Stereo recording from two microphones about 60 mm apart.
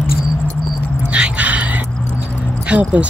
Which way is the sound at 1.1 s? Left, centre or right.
Right.